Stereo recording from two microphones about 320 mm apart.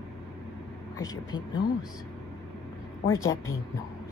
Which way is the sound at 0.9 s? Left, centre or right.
Centre.